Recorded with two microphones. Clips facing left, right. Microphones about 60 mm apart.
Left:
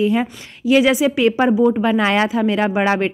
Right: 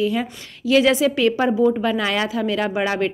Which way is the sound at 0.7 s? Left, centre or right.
Centre.